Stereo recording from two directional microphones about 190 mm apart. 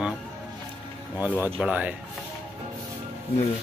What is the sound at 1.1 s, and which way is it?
Speech, 10° right (ahead or behind).